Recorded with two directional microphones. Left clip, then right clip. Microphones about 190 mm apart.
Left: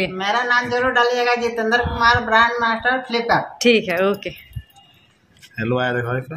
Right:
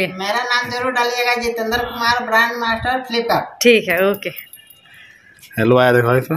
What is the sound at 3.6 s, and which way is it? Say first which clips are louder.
Speech: right 7 dB; centre (ahead or behind).